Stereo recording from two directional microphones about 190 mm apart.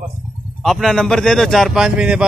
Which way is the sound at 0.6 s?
Centre (ahead or behind).